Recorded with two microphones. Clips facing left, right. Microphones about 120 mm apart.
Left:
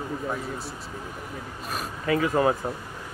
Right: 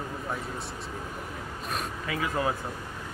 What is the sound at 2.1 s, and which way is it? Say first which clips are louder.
Speech: left 7 dB; 45° left (ahead or behind).